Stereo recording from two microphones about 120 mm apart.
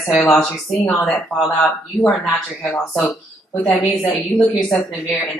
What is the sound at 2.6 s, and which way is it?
Speech, 15° left (ahead or behind).